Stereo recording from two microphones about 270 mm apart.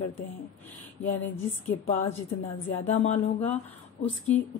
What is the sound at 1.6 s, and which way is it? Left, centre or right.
Speech, left.